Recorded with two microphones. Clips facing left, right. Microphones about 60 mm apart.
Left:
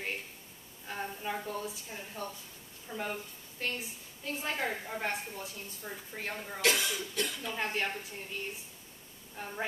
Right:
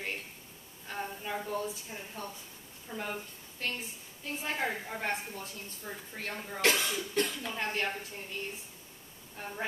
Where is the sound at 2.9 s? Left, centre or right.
Centre.